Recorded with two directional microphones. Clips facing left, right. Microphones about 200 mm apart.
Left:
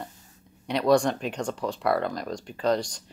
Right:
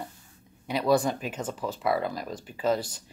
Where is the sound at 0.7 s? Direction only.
5° right (ahead or behind).